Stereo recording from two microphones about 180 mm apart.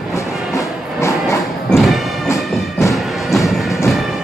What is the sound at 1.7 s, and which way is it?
Music, centre (ahead or behind).